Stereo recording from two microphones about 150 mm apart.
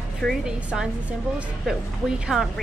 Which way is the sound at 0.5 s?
5° right (ahead or behind).